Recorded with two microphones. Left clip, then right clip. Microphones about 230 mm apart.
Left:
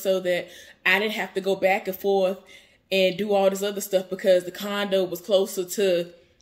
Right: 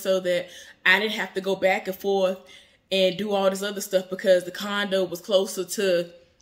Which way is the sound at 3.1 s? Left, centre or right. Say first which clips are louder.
Left 2 dB; centre.